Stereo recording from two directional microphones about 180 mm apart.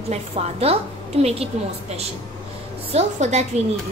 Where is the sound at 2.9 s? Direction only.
40° right (ahead or behind).